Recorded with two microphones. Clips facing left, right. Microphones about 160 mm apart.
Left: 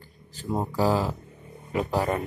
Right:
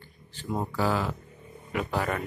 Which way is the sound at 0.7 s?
35° left (ahead or behind).